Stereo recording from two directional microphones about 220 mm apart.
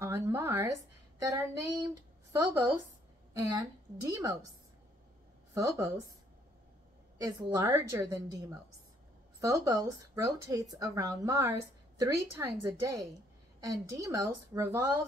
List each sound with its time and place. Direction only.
0.0 s speech: 10° right (ahead or behind)
5.5 s a woman's voice: 15° right (ahead or behind)
7.2 s speech: 15° right (ahead or behind)
9.4 s speech: 15° right (ahead or behind)